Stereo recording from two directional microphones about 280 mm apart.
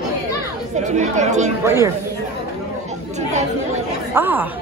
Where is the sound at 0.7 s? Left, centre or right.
Right.